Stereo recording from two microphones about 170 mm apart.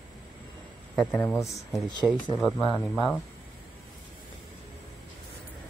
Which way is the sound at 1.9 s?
25° left (ahead or behind).